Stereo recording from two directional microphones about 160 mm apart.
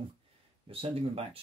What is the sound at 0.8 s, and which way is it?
Speech, 35° right (ahead or behind).